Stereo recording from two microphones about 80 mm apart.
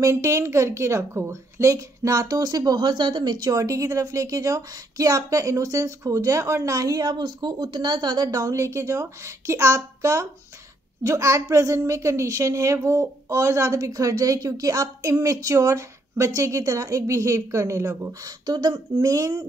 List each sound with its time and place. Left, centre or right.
0.0 s a woman's voice: right
18.4 s speech: right